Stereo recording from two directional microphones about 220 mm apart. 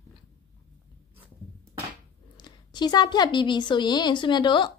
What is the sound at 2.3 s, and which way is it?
A woman's voice, 20° left (ahead or behind).